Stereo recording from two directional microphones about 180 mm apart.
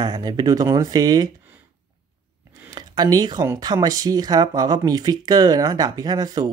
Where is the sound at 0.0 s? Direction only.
20° right (ahead or behind).